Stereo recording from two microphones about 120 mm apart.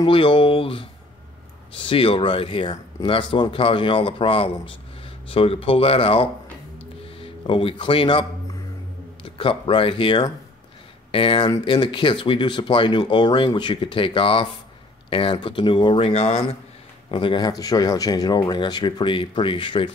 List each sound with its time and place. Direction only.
0.0 s speech: 45° left (ahead or behind)
16.1 s speech: 60° left (ahead or behind)
17.1 s speech: 45° left (ahead or behind)